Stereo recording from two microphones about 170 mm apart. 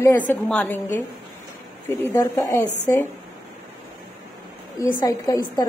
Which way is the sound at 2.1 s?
15° left (ahead or behind).